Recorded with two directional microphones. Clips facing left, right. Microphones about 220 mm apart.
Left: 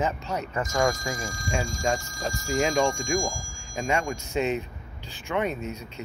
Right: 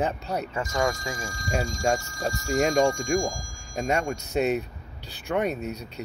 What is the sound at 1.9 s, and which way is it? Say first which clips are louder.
Speech: right 2 dB; 65° right (ahead or behind).